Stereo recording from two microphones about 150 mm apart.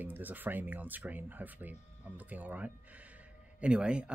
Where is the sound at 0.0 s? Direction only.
10° right (ahead or behind).